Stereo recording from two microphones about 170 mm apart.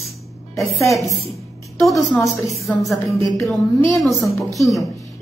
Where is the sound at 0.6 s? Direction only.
Centre (ahead or behind).